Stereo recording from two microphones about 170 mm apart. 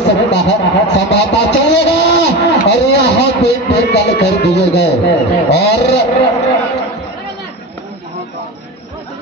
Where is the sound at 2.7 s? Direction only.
90° left.